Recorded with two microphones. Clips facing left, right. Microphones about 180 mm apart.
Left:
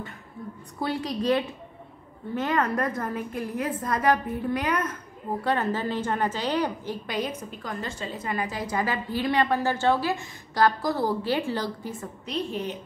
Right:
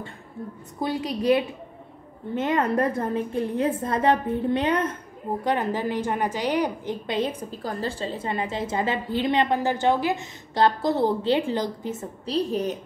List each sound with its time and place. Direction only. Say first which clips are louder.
0.7 s a woman's voice: right 2 dB; 20° right (ahead or behind)
5.4 s a woman's voice: right 1 dB; 15° right (ahead or behind)
7.1 s a woman's voice: right 4 dB; 25° right (ahead or behind)
12.4 s a woman's voice: right 5 dB; 40° right (ahead or behind)